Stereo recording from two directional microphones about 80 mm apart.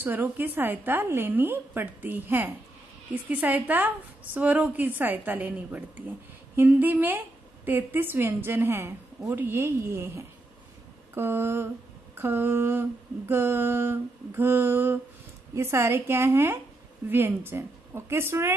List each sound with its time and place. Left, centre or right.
0.0 s a woman's voice: right